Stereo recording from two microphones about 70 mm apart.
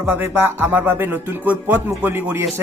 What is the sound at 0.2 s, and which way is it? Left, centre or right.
Speech, right.